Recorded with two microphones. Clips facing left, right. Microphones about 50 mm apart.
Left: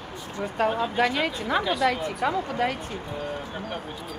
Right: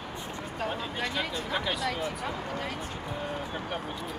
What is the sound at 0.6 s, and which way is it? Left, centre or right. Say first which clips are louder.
Speech: left 9 dB; left.